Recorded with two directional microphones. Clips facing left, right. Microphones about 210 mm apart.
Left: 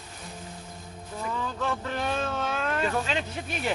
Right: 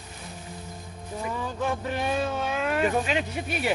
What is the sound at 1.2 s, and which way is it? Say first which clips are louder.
Speech: right 1 dB; 15° right (ahead or behind).